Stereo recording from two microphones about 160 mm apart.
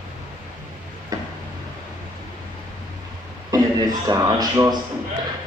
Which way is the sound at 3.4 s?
25° right (ahead or behind).